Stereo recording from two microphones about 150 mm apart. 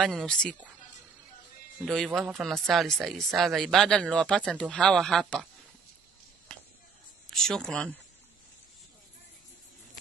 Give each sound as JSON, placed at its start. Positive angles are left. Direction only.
{"t": 0.0, "sound": "speech", "side_deg": 0}
{"t": 1.8, "sound": "speech", "side_deg": 0}
{"t": 7.2, "sound": "speech", "side_deg": 5}